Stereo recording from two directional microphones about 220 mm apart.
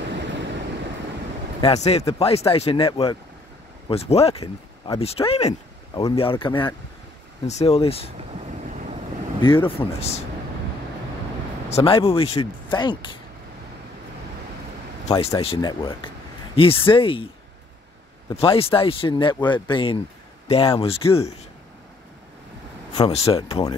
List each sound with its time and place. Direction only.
0.1 s vehicle: 55° right (ahead or behind)
1.6 s speech: 30° left (ahead or behind)
8.2 s vehicle: 30° right (ahead or behind)
9.4 s speech: 25° left (ahead or behind)
11.7 s speech: 25° left (ahead or behind)
15.0 s speech: 25° left (ahead or behind)
18.3 s speech: 25° left (ahead or behind)
22.9 s speech: 25° left (ahead or behind)